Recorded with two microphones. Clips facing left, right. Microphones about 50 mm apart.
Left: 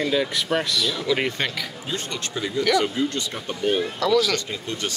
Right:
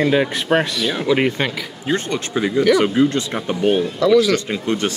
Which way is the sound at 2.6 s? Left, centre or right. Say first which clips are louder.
Right 6 dB; centre.